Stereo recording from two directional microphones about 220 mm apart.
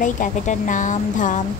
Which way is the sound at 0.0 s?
35° left (ahead or behind).